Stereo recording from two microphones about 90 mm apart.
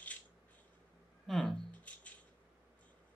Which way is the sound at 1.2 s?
10° left (ahead or behind).